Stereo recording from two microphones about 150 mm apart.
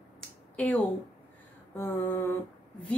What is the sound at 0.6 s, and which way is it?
A woman's voice, 10° left (ahead or behind).